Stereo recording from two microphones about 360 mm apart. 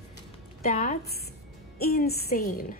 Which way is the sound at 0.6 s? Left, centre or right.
Left.